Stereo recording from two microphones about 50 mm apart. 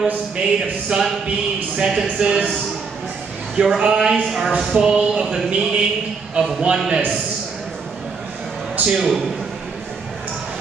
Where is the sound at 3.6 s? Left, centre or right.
Centre.